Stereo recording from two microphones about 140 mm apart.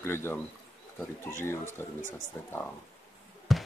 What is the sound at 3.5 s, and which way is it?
Basketball bounce, centre (ahead or behind).